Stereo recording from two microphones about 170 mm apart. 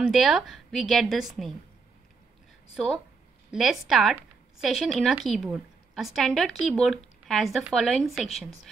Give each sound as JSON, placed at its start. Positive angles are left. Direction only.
{"t": 0.0, "sound": "a woman's voice", "side_deg": 0}
{"t": 2.7, "sound": "a woman's voice", "side_deg": 0}